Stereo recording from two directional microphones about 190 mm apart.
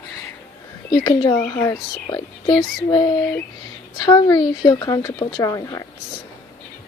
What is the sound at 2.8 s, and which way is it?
Speech, 25° left (ahead or behind).